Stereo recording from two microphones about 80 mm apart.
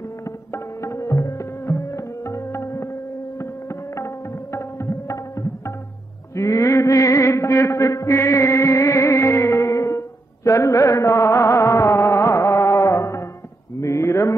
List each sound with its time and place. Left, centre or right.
0.5 s music: left
3.9 s tabla: left
6.3 s a sound: left